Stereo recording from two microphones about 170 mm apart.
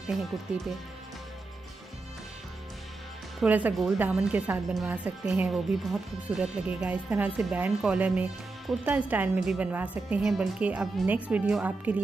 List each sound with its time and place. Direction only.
0.0 s speech: centre (ahead or behind)
3.3 s a woman's voice: 10° right (ahead or behind)